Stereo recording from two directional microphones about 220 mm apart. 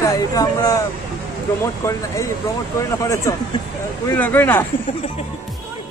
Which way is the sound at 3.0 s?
15° left (ahead or behind).